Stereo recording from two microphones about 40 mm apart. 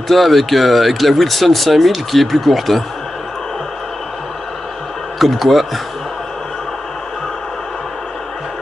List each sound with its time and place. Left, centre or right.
0.1 s speech: centre
5.2 s speech: centre